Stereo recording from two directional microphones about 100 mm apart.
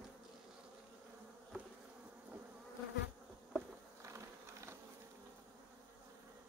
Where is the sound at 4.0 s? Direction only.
30° right (ahead or behind).